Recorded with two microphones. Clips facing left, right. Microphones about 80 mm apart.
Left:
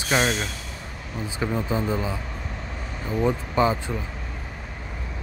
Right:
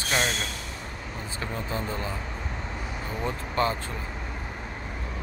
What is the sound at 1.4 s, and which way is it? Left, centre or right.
Speech, centre.